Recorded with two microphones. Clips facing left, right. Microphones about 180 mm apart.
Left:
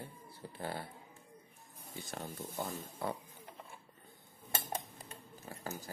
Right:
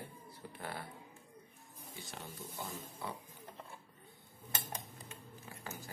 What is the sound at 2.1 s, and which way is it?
Speech, 50° left (ahead or behind).